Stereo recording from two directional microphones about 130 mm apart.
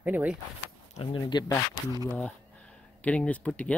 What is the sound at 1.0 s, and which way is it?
Speech, 35° left (ahead or behind).